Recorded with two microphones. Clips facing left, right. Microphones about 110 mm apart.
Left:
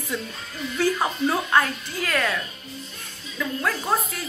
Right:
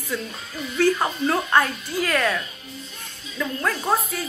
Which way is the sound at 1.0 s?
10° left (ahead or behind).